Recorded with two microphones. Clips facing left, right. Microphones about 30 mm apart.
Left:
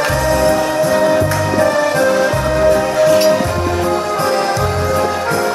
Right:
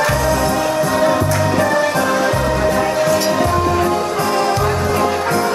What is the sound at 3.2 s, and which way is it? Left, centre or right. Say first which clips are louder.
Music: left 3 dB; centre.